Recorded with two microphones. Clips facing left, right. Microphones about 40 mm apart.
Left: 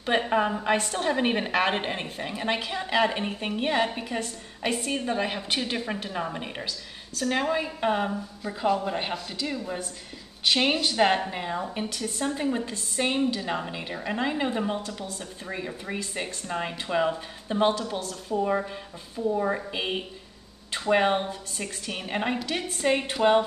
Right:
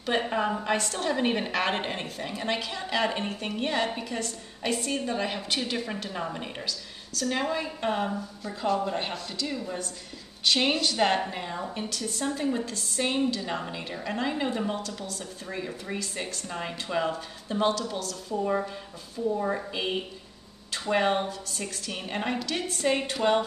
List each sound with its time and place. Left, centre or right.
0.1 s a woman's voice: centre